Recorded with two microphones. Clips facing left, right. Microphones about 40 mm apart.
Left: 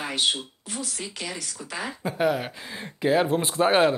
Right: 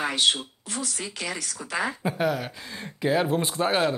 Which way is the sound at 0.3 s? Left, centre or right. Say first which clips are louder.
Right 3 dB; right.